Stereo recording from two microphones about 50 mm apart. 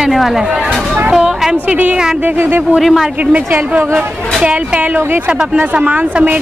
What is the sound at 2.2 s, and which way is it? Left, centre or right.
Speech, right.